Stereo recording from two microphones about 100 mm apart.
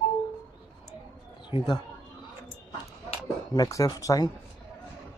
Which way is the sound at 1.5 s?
50° left (ahead or behind).